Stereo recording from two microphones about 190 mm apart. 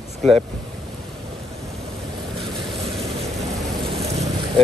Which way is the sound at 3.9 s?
35° right (ahead or behind).